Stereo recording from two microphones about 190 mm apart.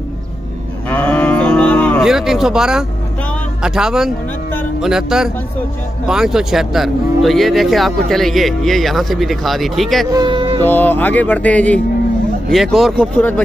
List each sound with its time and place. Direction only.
0.8 s moo: 10° left (ahead or behind)
2.0 s speech: 5° right (ahead or behind)
10.1 s speech: 25° right (ahead or behind)
10.6 s speech: 10° left (ahead or behind)